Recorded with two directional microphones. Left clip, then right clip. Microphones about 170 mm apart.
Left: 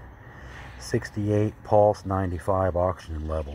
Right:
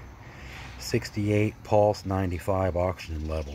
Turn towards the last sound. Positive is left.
turn(degrees=0)  # may be behind; listen again after turning